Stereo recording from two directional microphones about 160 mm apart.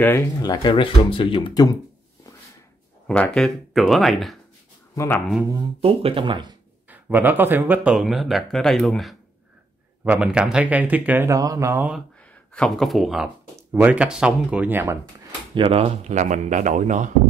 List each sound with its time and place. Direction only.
0.4 s speech: 25° left (ahead or behind)
3.1 s speech: 5° left (ahead or behind)
4.9 s speech: 15° left (ahead or behind)
5.8 s speech: 35° right (ahead or behind)
6.9 s speech: 10° right (ahead or behind)
12.5 s speech: 5° left (ahead or behind)
15.5 s speech: 35° right (ahead or behind); by 17.1 s 50° right (ahead or behind)